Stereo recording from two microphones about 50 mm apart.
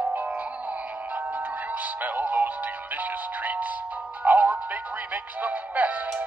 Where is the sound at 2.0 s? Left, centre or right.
Right.